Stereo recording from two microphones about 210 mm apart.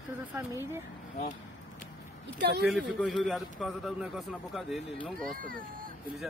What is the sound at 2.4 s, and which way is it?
Speech, 50° right (ahead or behind).